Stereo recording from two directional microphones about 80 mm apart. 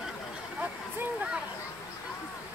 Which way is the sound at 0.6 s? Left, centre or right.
Centre.